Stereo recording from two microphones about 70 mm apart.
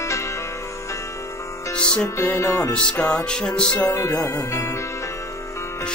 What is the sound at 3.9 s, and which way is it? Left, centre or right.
Speech, left.